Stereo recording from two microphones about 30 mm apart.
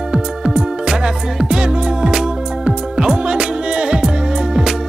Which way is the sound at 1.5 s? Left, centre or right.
Right.